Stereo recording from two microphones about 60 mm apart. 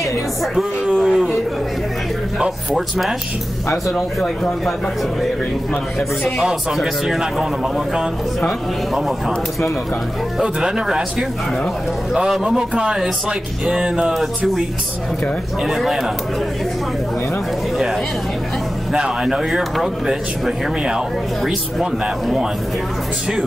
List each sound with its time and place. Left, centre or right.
0.9 s a sound: centre
3.9 s speech: centre
6.4 s speech: centre
10.4 s speech: centre
15.6 s speech: centre
18.9 s speech: centre